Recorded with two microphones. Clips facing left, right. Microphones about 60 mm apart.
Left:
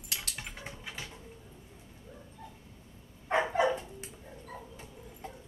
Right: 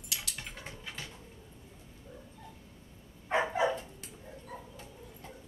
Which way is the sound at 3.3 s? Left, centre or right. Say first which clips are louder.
Left 2 dB; centre.